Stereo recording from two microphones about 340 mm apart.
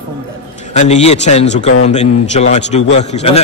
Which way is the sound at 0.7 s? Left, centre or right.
Centre.